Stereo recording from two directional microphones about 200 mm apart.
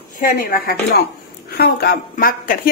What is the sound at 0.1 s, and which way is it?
A woman's voice, 45° left (ahead or behind).